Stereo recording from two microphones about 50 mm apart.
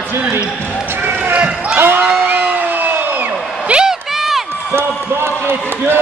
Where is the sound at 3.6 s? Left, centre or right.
Centre.